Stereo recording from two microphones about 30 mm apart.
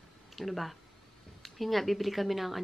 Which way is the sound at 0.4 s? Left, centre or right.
Centre.